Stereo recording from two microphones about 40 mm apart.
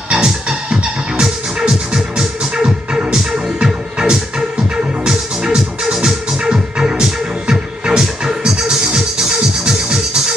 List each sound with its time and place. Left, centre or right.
0.1 s music: centre